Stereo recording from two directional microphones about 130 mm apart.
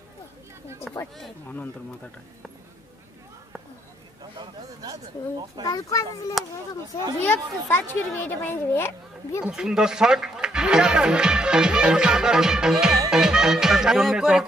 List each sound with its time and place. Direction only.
0.9 s a sound: centre (ahead or behind)
4.2 s a man's voice: 30° right (ahead or behind)
5.6 s a child's voice: 25° left (ahead or behind)
9.4 s speech: 5° right (ahead or behind)
13.1 s music: 5° right (ahead or behind)